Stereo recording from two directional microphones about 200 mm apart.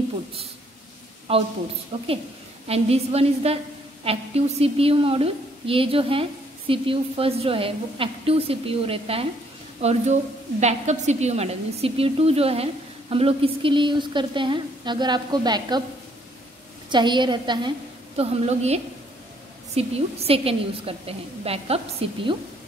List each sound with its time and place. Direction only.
1.3 s a woman's voice: 30° right (ahead or behind)
16.9 s a woman's voice: 20° right (ahead or behind)